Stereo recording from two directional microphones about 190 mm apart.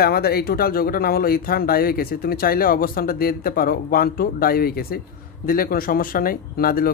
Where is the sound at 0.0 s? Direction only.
55° left (ahead or behind).